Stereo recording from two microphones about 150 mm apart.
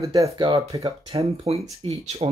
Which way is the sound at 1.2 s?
45° right (ahead or behind).